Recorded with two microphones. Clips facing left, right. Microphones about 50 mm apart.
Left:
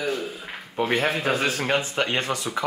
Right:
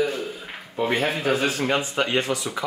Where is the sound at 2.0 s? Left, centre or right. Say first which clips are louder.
Right 2 dB; left.